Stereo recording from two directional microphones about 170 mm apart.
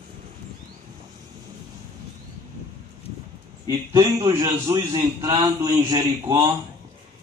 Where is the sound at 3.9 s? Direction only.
15° right (ahead or behind).